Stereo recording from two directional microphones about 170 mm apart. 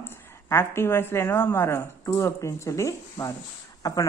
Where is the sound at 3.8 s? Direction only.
20° left (ahead or behind).